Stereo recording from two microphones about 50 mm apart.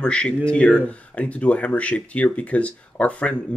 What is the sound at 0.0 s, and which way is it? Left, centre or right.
Speech, left.